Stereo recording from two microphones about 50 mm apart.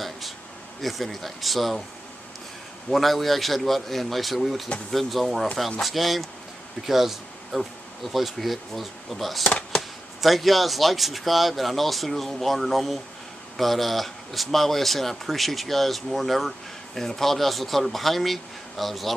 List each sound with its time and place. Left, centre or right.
0.8 s speech: centre
2.9 s speech: centre
9.4 s a sound: centre
10.2 s speech: centre